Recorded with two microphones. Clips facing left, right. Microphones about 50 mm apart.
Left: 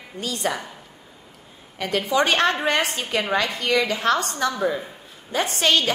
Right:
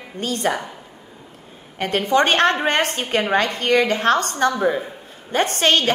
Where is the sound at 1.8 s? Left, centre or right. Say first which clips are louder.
Right 3 dB; right.